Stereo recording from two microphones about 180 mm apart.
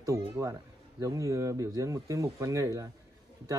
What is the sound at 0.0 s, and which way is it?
A man's voice, 15° right (ahead or behind).